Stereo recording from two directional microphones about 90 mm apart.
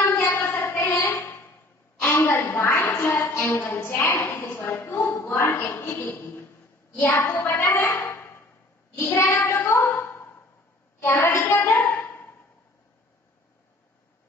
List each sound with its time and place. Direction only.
0.0 s child singing: 30° left (ahead or behind)
2.0 s a sound: 25° left (ahead or behind)
7.0 s a child's voice: 25° left (ahead or behind)
8.9 s child singing: 25° left (ahead or behind)
11.0 s a child's voice: 25° left (ahead or behind)
11.9 s a sound: 25° left (ahead or behind)